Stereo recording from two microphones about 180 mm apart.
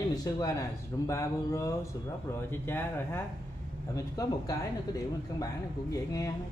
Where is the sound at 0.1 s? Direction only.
20° left (ahead or behind).